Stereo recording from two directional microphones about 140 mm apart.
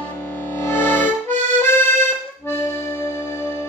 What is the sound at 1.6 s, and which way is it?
Accordion, 15° left (ahead or behind).